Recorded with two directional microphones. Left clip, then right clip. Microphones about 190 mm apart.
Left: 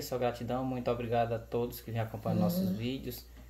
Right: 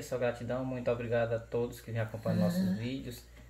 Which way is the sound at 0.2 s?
30° left (ahead or behind).